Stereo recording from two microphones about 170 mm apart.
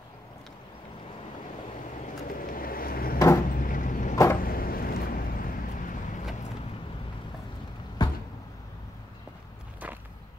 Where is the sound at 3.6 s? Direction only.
55° left (ahead or behind).